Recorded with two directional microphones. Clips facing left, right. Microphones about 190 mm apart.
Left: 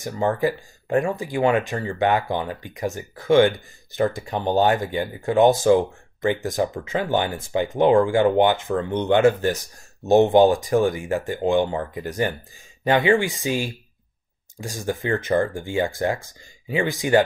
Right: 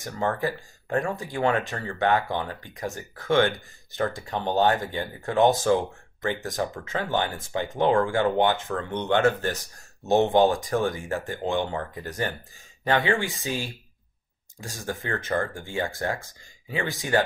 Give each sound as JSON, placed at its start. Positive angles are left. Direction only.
{"t": 0.0, "sound": "speech", "side_deg": 15}